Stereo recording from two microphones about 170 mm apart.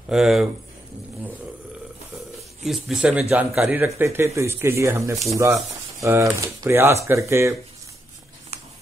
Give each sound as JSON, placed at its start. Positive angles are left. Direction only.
{"t": 0.1, "sound": "speech", "side_deg": 0}
{"t": 2.6, "sound": "speech", "side_deg": 0}